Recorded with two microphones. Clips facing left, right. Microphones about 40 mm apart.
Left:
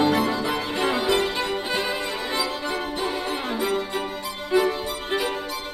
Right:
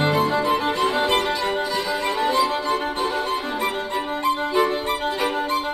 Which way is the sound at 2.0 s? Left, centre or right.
Right.